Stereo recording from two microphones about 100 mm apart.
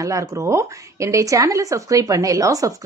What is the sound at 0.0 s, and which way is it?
Speech, 30° right (ahead or behind).